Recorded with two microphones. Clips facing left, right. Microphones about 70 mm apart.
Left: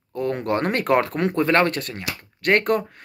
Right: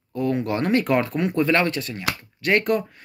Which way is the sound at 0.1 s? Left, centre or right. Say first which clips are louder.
Even; left.